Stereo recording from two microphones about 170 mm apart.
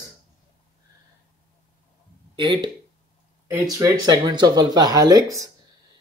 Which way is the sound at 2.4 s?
25° right (ahead or behind).